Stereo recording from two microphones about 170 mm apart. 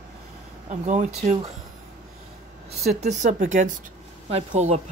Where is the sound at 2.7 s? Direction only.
40° right (ahead or behind).